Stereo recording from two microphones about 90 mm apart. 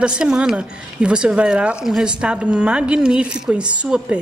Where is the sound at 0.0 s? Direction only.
10° right (ahead or behind).